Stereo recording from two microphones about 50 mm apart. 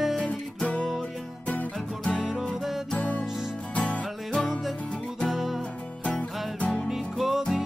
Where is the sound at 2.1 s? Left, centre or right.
Centre.